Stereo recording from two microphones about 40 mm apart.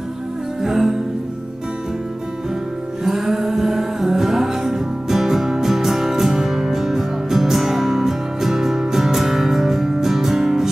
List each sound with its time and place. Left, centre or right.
0.6 s music: centre
3.0 s music: centre